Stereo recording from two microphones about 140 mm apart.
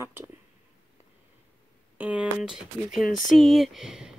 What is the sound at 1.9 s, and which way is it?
Speech, 10° right (ahead or behind).